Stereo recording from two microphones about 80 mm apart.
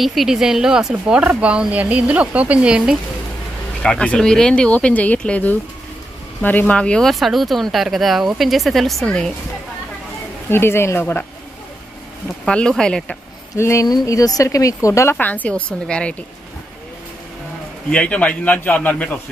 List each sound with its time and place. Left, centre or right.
0.0 s speech: centre
3.8 s speech: centre
7.1 s speech: centre
10.5 s a man's voice: left
12.4 s speech: centre
13.6 s speech: left
13.8 s speech: left
15.1 s speech: left
17.9 s a man's voice: centre